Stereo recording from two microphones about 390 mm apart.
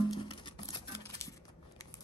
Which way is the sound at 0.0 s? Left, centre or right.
Centre.